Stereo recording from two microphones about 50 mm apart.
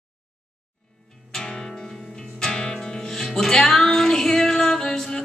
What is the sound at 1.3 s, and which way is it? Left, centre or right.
Music, centre.